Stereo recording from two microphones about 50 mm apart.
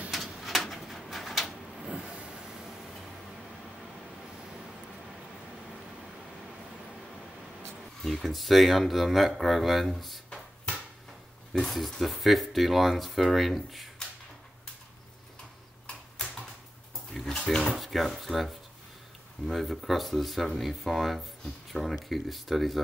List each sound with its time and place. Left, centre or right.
0.1 s pigeon: centre
1.9 s vehicle: centre
8.0 s speech: centre
11.5 s speech: centre
17.1 s a sound: centre
17.4 s speech: centre
17.7 s speech: centre